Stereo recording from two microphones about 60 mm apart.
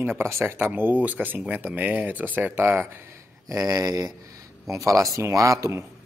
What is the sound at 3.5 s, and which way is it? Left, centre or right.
Speech, right.